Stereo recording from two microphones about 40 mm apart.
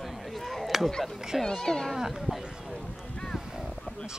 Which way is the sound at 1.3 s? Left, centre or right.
Centre.